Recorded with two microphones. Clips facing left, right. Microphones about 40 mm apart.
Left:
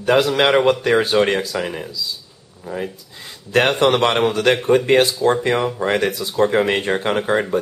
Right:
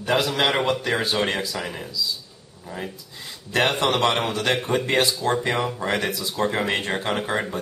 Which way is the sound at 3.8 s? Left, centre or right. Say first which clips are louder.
Left 6 dB; left.